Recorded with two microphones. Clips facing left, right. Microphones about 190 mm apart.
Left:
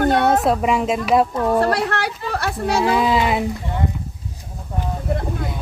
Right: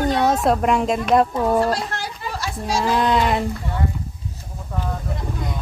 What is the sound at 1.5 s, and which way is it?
Speech, 65° left (ahead or behind).